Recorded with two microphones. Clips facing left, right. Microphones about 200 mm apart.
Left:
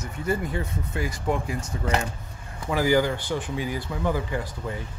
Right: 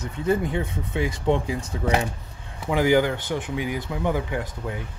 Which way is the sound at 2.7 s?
20° right (ahead or behind).